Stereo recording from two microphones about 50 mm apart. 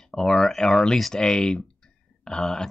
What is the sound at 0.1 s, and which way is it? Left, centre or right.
Speech, centre.